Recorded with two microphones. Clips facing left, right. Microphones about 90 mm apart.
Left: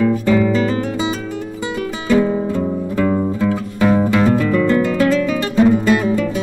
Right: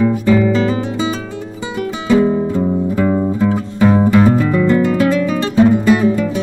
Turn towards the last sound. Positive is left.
turn(degrees=-20)  # may be behind; listen again after turning